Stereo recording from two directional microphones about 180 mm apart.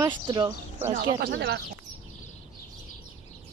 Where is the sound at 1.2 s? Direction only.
60° right (ahead or behind).